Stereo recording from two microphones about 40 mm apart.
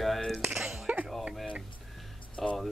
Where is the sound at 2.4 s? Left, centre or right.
Centre.